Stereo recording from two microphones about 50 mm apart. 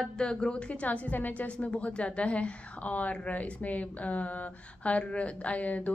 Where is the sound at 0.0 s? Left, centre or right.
Centre.